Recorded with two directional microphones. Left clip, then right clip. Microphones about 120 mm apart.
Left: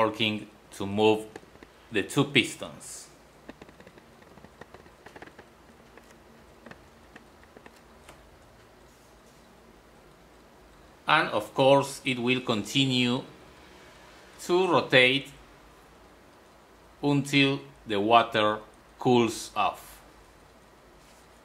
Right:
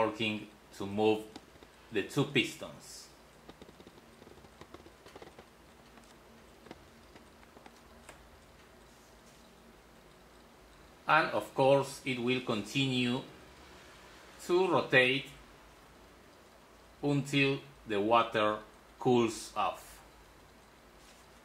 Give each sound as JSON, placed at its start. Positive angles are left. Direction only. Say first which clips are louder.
{"t": 0.0, "sound": "speech", "louder": "left 6 dB", "side_deg": 35}
{"t": 11.1, "sound": "speech", "louder": "left 4 dB", "side_deg": 30}
{"t": 14.5, "sound": "speech", "louder": "left 5 dB", "side_deg": 35}
{"t": 17.0, "sound": "speech", "louder": "left 6 dB", "side_deg": 35}